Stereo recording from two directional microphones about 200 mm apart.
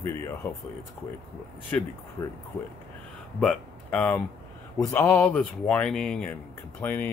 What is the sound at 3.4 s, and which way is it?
Speech, 5° left (ahead or behind).